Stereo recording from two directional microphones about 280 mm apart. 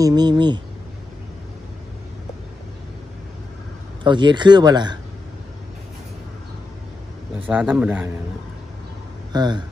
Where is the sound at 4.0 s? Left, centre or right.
Centre.